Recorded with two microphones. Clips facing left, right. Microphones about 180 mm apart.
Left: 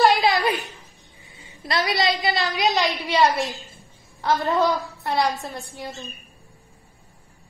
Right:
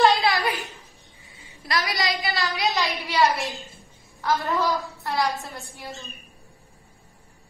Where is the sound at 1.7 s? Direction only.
25° left (ahead or behind).